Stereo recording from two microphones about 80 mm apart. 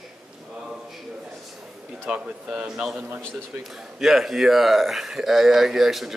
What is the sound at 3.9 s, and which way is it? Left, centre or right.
Speech, centre.